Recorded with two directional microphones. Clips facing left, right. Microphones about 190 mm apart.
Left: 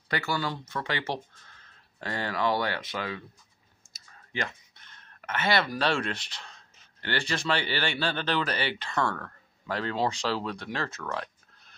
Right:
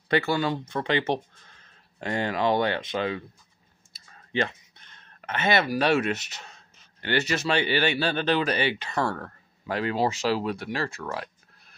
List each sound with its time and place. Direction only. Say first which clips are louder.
0.3 s speech: right 5 dB; 20° right (ahead or behind)
4.3 s a sound: right 7 dB; 25° right (ahead or behind)
5.8 s speech: right 5 dB; 10° right (ahead or behind)